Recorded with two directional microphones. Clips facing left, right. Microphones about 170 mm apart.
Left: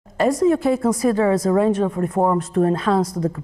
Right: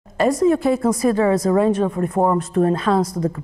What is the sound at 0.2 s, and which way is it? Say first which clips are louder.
Speech: right 1 dB; 15° right (ahead or behind).